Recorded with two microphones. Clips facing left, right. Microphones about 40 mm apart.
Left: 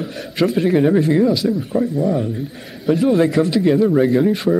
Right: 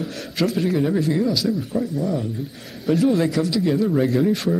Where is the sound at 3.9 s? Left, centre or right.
Centre.